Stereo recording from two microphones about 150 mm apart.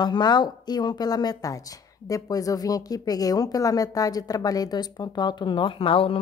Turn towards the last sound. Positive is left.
turn(degrees=35)  # may be behind; listen again after turning